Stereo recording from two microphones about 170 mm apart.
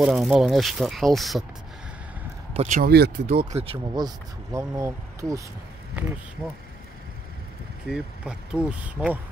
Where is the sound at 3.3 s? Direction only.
35° right (ahead or behind).